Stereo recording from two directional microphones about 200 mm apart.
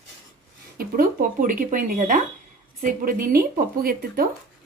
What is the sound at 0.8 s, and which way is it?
Speech, 45° right (ahead or behind).